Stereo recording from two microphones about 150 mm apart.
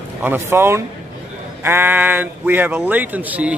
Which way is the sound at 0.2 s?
15° right (ahead or behind).